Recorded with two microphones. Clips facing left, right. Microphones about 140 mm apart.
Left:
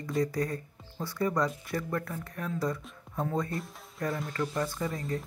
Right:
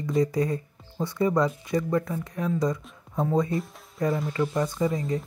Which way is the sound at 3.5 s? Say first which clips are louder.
Right 7 dB; centre (ahead or behind).